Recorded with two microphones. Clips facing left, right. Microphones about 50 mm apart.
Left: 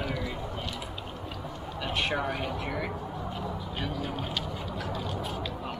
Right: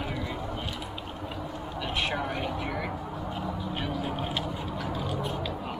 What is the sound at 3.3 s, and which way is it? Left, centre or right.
Speech, centre.